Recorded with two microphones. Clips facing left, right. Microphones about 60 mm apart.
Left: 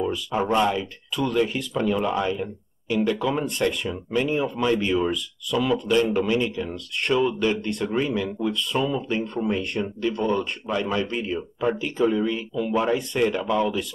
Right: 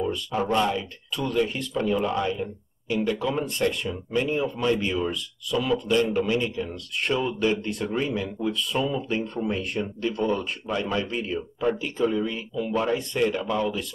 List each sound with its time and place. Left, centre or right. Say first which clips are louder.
0.3 s speech: left 2 dB; left
0.6 s speech: left 2 dB; centre
5.1 s speech: left 2 dB; centre